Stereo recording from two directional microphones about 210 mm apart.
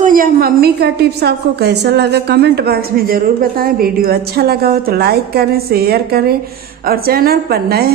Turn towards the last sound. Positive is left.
turn(degrees=-45)  # may be behind; listen again after turning